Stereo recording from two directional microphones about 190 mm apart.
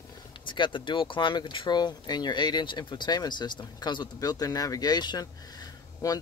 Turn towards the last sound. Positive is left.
turn(degrees=15)  # may be behind; listen again after turning